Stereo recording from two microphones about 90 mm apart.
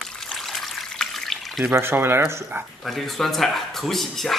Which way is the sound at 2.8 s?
Centre (ahead or behind).